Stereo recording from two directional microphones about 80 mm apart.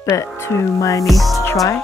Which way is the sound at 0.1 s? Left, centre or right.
Left.